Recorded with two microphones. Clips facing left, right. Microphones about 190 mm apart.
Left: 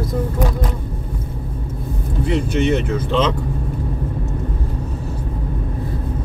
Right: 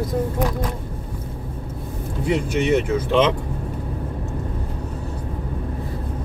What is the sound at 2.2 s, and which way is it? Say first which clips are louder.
Speech: left 2 dB; 10° right (ahead or behind).